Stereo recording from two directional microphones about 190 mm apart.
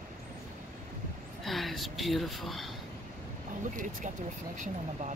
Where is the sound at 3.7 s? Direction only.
40° right (ahead or behind).